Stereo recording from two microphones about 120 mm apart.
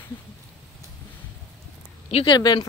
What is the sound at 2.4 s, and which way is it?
Speech, 35° left (ahead or behind).